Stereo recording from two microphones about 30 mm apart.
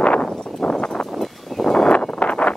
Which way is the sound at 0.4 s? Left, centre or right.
Left.